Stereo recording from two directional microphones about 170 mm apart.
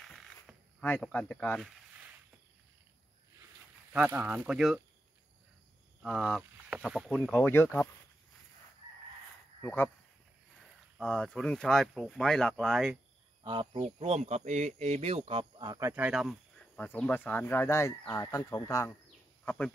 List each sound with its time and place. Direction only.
0.0 s a sound: centre (ahead or behind)
3.9 s speech: 10° right (ahead or behind)
6.0 s speech: centre (ahead or behind)
7.4 s speech: 10° left (ahead or behind)
9.6 s speech: 10° left (ahead or behind)
11.0 s speech: 5° left (ahead or behind)
13.4 s speech: 30° right (ahead or behind)
15.9 s speech: 5° right (ahead or behind)
16.7 s speech: 10° left (ahead or behind)